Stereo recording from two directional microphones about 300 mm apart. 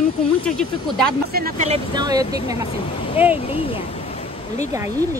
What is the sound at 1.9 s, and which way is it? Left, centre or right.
Speech, centre.